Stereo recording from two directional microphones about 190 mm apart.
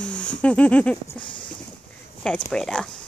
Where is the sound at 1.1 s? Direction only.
25° left (ahead or behind).